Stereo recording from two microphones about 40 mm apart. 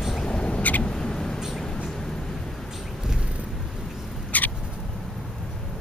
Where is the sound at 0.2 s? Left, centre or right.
Left.